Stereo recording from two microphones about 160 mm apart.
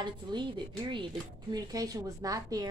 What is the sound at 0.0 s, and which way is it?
A woman's voice, 30° right (ahead or behind).